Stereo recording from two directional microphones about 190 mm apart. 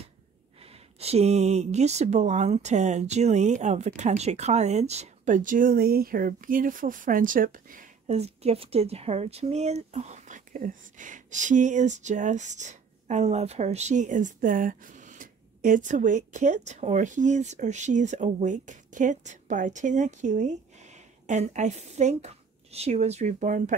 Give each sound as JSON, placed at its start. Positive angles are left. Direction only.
{"t": 0.9, "sound": "speech", "side_deg": -35}